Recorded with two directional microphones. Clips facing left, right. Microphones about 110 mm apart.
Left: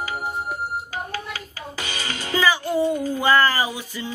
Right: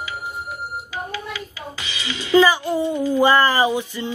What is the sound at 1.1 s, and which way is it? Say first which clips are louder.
Music: right 1 dB; 45° left (ahead or behind).